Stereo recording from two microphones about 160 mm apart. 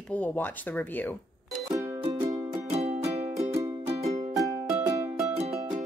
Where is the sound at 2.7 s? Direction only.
40° right (ahead or behind).